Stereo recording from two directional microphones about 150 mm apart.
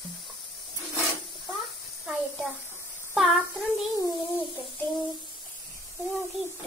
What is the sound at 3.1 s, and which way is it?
Speech, centre (ahead or behind).